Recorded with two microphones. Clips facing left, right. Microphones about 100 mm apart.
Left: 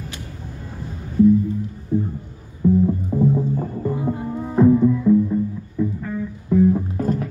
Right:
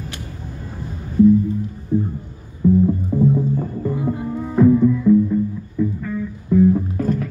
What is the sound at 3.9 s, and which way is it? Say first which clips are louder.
Music: right 2 dB; 35° left (ahead or behind).